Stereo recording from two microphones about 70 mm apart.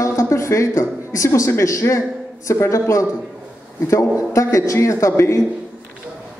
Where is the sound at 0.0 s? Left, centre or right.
Left.